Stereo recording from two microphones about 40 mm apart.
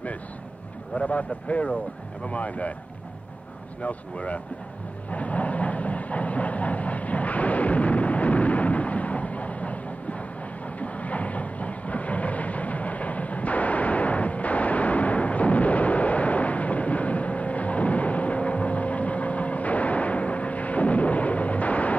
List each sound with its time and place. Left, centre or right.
0.9 s speech: left
3.8 s speech: left
5.1 s train: left